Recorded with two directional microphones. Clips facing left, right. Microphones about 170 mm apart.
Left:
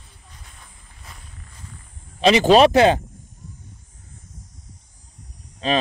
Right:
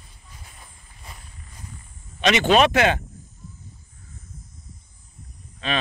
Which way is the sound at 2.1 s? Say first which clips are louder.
Left 4 dB; 35° left (ahead or behind).